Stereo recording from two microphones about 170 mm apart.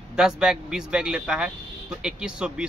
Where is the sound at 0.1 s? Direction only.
5° right (ahead or behind).